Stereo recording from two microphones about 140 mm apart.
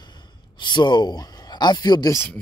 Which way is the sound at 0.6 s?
35° left (ahead or behind).